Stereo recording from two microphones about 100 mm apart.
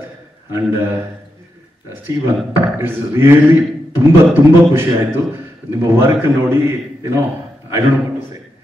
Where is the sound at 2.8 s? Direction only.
25° right (ahead or behind).